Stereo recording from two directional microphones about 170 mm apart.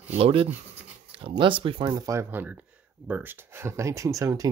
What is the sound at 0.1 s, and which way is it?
Speech, 35° right (ahead or behind).